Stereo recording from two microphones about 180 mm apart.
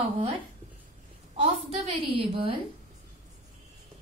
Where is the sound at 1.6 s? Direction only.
30° right (ahead or behind).